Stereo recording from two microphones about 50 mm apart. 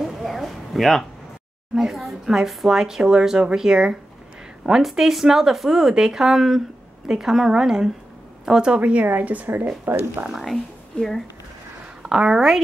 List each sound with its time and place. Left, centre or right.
0.0 s a sound: centre
1.8 s a woman's voice: centre; by 10.0 s right
10.3 s a woman's voice: centre
12.0 s speech: centre